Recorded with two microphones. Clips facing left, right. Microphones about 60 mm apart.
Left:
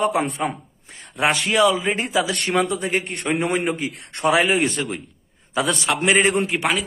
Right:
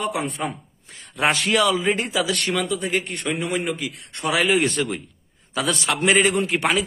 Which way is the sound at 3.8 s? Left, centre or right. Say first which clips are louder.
Left 3 dB; left.